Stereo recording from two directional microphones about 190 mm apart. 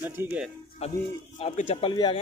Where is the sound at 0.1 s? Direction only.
10° right (ahead or behind).